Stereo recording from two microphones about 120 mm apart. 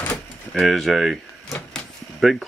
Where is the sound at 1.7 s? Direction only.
Centre (ahead or behind).